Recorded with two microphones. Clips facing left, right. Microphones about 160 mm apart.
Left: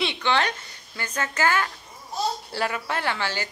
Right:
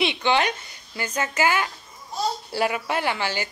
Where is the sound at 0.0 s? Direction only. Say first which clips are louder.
Right 2 dB; 15° right (ahead or behind).